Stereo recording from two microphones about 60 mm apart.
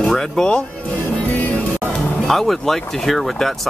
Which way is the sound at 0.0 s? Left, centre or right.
Centre.